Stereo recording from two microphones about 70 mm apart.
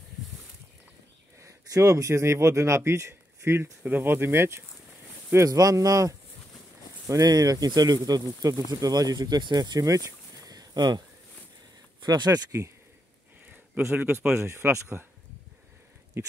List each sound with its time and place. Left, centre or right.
1.4 s a man's voice: right
3.8 s speech: right
5.5 s speech: right
9.8 s a sound: right
12.0 s speech: right
13.8 s speech: right